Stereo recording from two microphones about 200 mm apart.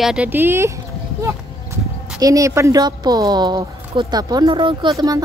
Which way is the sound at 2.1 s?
15° right (ahead or behind).